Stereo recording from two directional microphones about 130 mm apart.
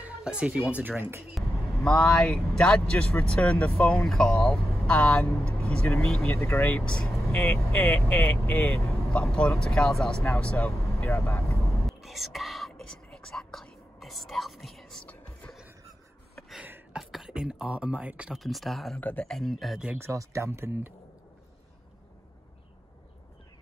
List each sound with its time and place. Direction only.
0.0 s speech: 10° right (ahead or behind)
1.3 s speech: 5° left (ahead or behind)
11.8 s whispering: centre (ahead or behind)
15.0 s music: 10° left (ahead or behind)
16.6 s a sound: 15° right (ahead or behind)
17.0 s speech: centre (ahead or behind)
18.9 s speech: 10° left (ahead or behind); by 20.0 s 5° right (ahead or behind)
20.0 s speech: 20° right (ahead or behind)